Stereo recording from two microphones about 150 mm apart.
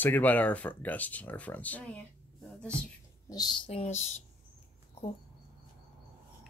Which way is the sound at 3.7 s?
45° left (ahead or behind).